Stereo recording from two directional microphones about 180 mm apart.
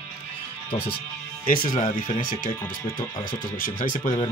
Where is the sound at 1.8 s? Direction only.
50° left (ahead or behind).